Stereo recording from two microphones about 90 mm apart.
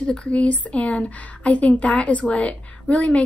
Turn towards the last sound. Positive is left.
turn(degrees=15)  # may be behind; listen again after turning